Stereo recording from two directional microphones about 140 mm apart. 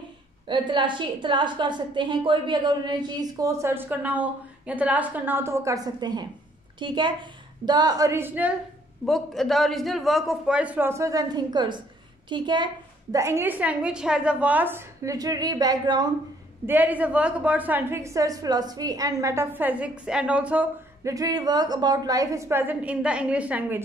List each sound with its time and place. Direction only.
0.5 s a woman's voice: 35° right (ahead or behind); by 8.5 s 10° right (ahead or behind)
9.0 s a man's voice: centre (ahead or behind); by 12.6 s 35° right (ahead or behind)
13.1 s a woman's voice: 20° right (ahead or behind)
16.6 s a woman's voice: 10° right (ahead or behind)
21.0 s a woman's voice: 25° right (ahead or behind)